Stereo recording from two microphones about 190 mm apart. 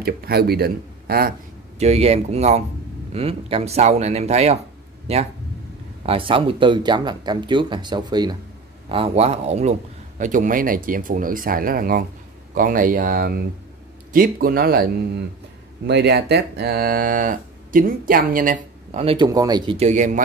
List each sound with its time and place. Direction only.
0.0 s speech: 55° right (ahead or behind)
1.8 s a man's voice: 35° right (ahead or behind); by 14.9 s 50° right (ahead or behind)
15.9 s a man's voice: 60° right (ahead or behind)
19.0 s speech: 25° right (ahead or behind); by 20.2 s 40° right (ahead or behind)